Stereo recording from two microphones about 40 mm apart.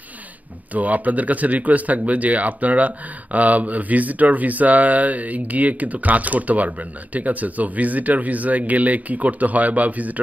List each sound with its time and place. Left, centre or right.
0.7 s speech: right